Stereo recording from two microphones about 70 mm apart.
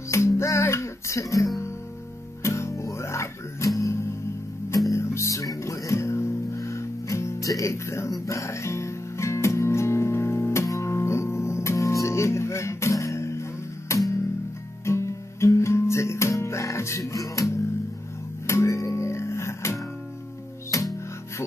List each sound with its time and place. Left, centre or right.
0.1 s music: left
18.5 s music: left